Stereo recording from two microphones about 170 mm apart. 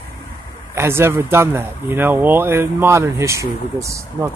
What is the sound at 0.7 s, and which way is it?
Speech, 15° right (ahead or behind).